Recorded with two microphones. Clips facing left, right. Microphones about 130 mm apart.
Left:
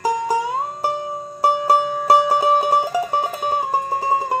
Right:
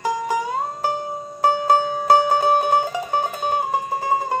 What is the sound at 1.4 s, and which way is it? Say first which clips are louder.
Music: left 1 dB; 30° left (ahead or behind).